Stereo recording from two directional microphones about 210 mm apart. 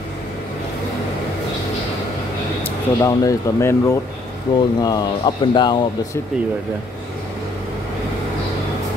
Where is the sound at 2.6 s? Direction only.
15° left (ahead or behind).